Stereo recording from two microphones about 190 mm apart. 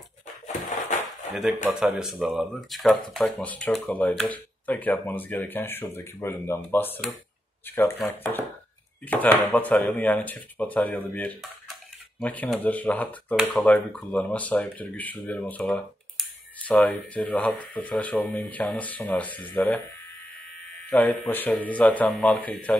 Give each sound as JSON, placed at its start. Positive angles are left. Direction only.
{"t": 0.5, "sound": "a sound", "side_deg": 40}
{"t": 1.6, "sound": "speech", "side_deg": -5}
{"t": 20.9, "sound": "speech", "side_deg": 5}